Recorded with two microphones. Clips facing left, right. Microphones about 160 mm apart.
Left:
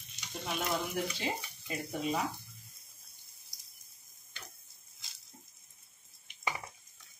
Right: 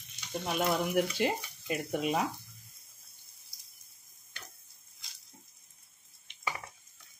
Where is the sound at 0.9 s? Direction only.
65° right (ahead or behind).